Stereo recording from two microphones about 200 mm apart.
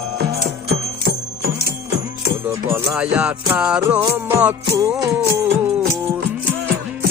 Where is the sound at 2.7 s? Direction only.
5° right (ahead or behind).